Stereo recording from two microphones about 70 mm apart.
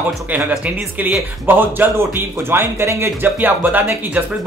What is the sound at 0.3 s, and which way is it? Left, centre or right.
Speech, right.